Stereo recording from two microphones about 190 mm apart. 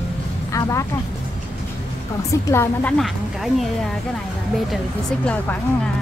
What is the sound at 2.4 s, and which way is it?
Speech, 15° left (ahead or behind).